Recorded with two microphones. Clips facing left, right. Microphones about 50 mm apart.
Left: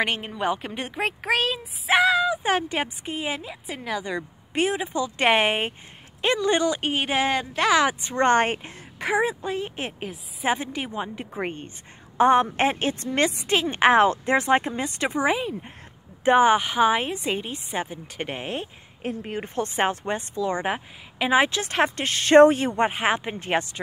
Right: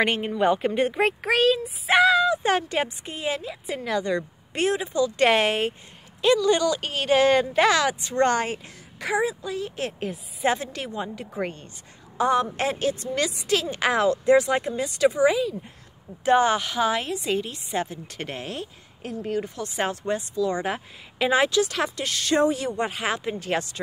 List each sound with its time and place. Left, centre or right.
0.0 s speech: centre
4.8 s a woman's voice: left
7.3 s speech: centre
7.7 s a woman's voice: left
10.1 s speech: centre
10.5 s a woman's voice: centre
16.3 s a woman's voice: left
20.7 s a woman's voice: centre
21.5 s a woman's voice: left